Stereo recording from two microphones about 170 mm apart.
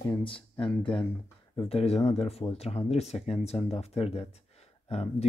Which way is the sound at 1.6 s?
35° left (ahead or behind).